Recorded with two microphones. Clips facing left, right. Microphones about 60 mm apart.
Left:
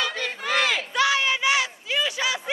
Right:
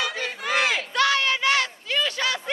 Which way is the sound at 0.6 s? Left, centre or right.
Right.